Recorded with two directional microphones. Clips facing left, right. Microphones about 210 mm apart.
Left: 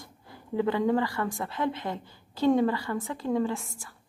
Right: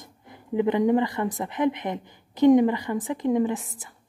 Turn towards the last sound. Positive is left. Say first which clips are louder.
# right 4 dB
turn(degrees=-20)  # may be behind; listen again after turning